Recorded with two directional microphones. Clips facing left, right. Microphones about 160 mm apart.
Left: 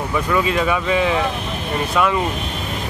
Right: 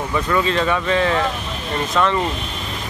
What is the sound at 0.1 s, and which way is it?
Speech, 10° left (ahead or behind).